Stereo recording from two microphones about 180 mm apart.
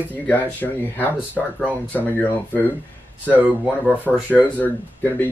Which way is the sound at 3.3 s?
5° right (ahead or behind).